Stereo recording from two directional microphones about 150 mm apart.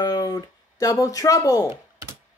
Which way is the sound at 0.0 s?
25° left (ahead or behind).